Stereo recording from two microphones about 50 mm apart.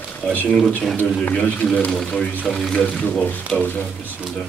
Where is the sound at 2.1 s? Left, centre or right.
Centre.